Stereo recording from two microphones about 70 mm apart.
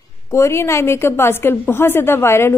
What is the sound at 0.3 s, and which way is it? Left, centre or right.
Speech, left.